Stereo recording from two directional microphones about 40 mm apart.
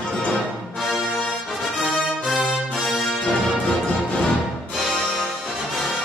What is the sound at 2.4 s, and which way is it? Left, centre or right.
Music, left.